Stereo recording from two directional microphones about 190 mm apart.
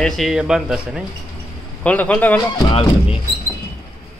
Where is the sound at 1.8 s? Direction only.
5° left (ahead or behind).